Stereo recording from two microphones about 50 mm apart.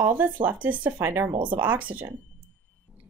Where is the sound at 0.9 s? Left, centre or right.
Right.